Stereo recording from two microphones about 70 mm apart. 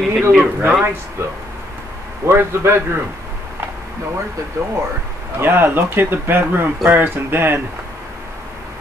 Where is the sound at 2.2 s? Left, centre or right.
Right.